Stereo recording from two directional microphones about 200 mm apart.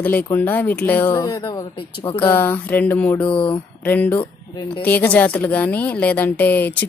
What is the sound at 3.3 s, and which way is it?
Speech, 25° left (ahead or behind).